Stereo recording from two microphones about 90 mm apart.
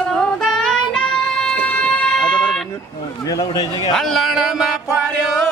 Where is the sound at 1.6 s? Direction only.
20° left (ahead or behind).